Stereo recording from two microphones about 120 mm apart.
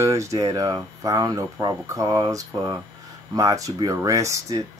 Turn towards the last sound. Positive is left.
turn(degrees=-25)  # may be behind; listen again after turning